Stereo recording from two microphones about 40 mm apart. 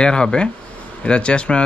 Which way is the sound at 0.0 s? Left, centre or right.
Left.